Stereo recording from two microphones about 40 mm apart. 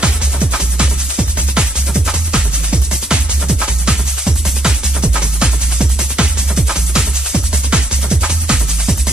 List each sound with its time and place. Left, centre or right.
0.0 s music: right